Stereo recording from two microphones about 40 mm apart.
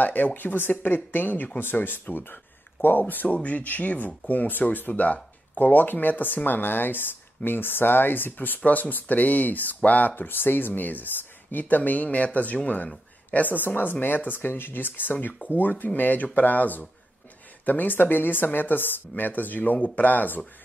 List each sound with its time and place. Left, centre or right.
0.0 s speech: left
3.4 s speech: left